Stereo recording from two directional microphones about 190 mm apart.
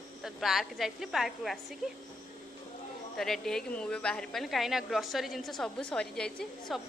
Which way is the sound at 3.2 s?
Centre (ahead or behind).